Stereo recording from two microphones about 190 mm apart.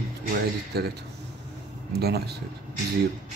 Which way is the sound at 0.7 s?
55° right (ahead or behind).